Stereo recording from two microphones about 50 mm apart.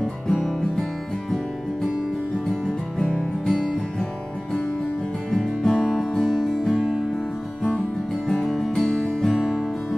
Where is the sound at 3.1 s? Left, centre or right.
Left.